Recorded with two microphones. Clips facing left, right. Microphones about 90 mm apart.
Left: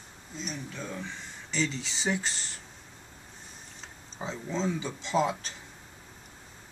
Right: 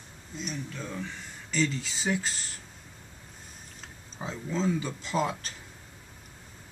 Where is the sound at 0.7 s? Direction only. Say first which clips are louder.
Right 1 dB; 5° left (ahead or behind).